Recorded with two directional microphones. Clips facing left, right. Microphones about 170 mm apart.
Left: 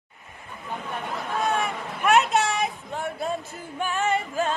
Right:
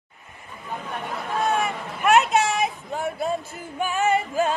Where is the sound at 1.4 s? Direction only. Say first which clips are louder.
Right 2 dB; centre (ahead or behind).